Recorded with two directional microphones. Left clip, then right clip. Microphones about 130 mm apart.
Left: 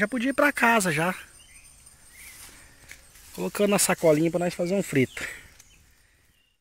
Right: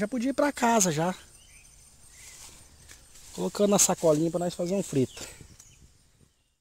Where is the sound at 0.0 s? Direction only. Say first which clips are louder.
Left 4 dB; centre (ahead or behind).